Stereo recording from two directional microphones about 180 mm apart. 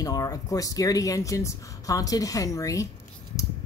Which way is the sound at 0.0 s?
20° left (ahead or behind).